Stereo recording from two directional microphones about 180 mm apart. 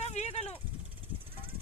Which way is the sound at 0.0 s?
40° left (ahead or behind).